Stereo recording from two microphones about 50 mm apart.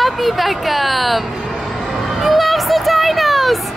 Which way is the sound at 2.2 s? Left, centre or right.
Centre.